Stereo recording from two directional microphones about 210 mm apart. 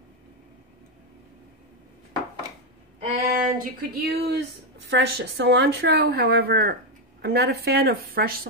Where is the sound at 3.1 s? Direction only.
45° right (ahead or behind).